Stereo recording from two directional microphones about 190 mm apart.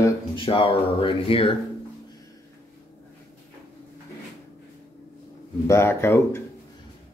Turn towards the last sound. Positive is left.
turn(degrees=15)  # may be behind; listen again after turning